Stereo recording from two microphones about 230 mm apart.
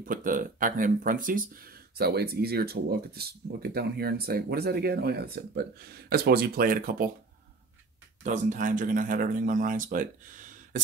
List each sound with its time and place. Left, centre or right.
0.0 s speech: right
8.2 s speech: right